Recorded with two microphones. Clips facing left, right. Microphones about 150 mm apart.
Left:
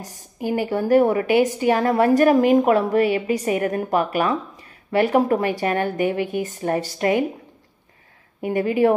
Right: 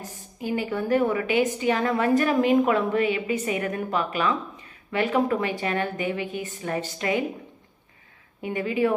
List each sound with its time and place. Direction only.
0.5 s a woman's voice: 40° left (ahead or behind)
8.4 s a woman's voice: 45° left (ahead or behind)